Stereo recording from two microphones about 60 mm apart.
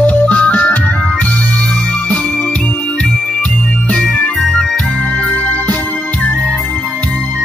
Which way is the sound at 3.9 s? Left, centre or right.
Left.